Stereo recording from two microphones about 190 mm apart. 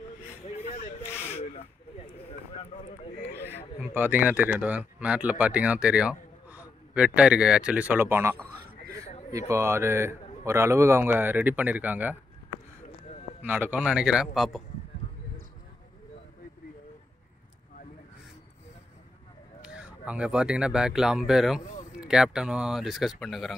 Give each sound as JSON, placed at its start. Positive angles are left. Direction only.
{"t": 0.5, "sound": "a sound", "side_deg": 40}
{"t": 1.3, "sound": "rub", "side_deg": 35}
{"t": 3.8, "sound": "speech", "side_deg": -10}
{"t": 9.5, "sound": "speech", "side_deg": -15}
{"t": 13.5, "sound": "speech", "side_deg": -10}
{"t": 19.6, "sound": "speech", "side_deg": -5}